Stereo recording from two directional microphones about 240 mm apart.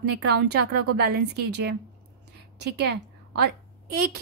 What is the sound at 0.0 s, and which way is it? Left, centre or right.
Speech, right.